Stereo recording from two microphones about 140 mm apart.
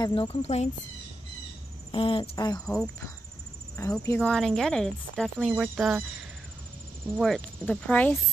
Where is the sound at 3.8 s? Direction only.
20° left (ahead or behind).